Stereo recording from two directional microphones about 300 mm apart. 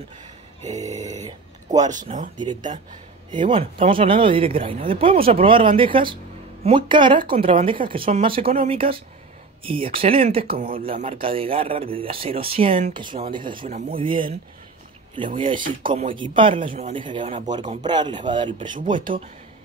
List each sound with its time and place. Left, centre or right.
0.7 s speech: right
15.3 s speech: centre